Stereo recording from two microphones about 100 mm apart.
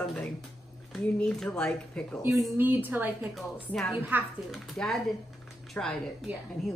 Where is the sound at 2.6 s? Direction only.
20° right (ahead or behind).